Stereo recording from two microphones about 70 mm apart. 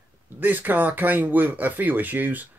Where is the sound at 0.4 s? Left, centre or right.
Right.